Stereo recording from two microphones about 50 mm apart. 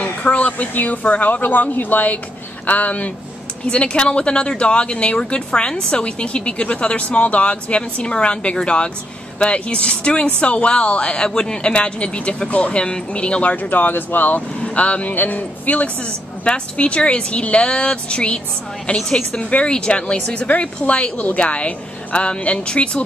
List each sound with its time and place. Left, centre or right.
0.0 s speech: left
3.6 s a woman's voice: centre